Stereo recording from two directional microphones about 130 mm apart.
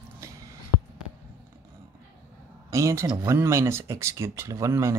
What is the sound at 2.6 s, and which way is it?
Speech, 25° right (ahead or behind).